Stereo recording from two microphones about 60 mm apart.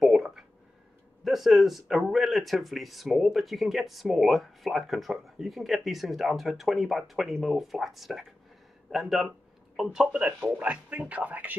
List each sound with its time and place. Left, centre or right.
0.0 s a sound: centre
1.2 s speech: centre
9.9 s speech: centre